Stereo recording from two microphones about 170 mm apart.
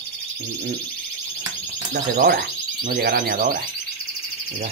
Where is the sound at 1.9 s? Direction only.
65° right (ahead or behind).